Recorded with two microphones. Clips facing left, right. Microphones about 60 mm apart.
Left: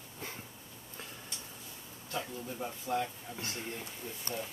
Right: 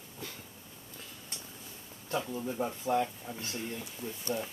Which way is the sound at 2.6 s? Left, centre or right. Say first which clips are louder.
Right 4 dB; right.